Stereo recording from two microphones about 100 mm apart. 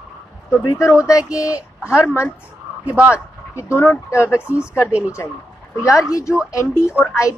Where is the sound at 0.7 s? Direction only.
30° left (ahead or behind).